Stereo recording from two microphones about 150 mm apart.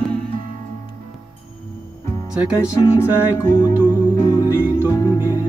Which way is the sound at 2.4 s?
10° right (ahead or behind).